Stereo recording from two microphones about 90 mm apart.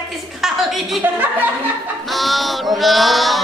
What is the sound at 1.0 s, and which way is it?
Chuckle, 20° right (ahead or behind).